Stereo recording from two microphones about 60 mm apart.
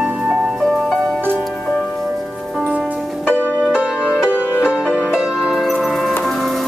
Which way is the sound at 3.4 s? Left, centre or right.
Right.